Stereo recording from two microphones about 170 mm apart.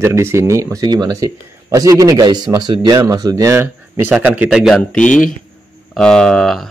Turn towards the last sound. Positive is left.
turn(degrees=5)  # may be behind; listen again after turning